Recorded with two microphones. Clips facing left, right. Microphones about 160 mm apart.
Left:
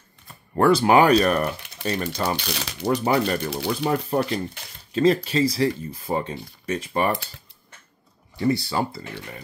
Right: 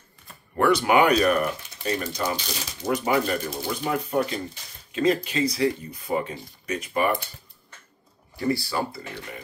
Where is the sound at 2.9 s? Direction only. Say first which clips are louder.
Left 2 dB; 35° left (ahead or behind).